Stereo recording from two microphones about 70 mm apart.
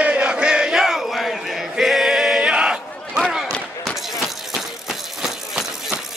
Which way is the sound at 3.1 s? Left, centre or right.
Centre.